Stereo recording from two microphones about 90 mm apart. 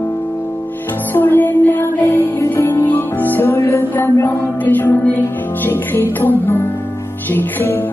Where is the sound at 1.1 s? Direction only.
20° left (ahead or behind).